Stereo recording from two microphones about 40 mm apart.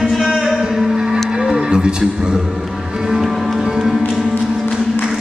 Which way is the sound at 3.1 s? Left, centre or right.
Centre.